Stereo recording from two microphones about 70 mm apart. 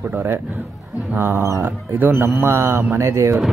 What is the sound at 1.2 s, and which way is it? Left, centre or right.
Speech, right.